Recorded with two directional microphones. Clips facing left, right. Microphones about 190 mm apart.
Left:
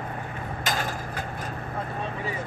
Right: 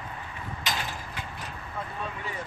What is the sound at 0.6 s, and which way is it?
Mechanisms, 45° left (ahead or behind).